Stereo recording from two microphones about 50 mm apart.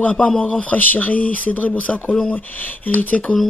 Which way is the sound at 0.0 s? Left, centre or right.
Left.